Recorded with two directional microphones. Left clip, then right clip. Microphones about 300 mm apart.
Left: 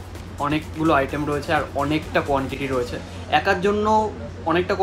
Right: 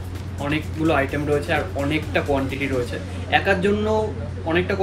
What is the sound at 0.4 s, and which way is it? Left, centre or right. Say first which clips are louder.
Speech: left 1 dB; centre.